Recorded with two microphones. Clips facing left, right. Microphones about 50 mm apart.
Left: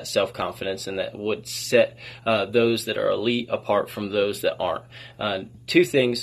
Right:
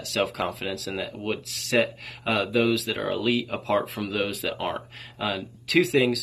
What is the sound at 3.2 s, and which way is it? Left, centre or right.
Speech, centre.